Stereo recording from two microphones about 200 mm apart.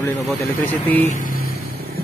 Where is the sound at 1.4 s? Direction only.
50° right (ahead or behind).